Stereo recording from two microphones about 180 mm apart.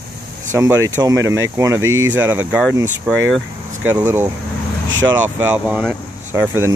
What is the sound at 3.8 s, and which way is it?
Speech, 10° right (ahead or behind).